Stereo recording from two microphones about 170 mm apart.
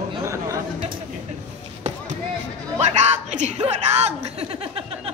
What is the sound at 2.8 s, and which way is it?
A woman's voice, 40° right (ahead or behind).